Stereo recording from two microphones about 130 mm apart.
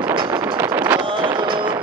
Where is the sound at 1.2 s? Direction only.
35° right (ahead or behind).